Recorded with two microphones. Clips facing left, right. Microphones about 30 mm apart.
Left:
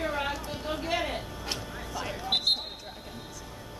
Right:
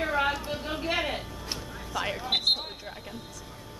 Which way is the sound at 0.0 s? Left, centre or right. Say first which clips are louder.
Right 4 dB; centre.